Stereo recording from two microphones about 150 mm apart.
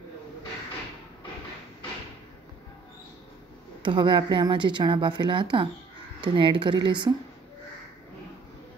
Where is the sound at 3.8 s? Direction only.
30° right (ahead or behind).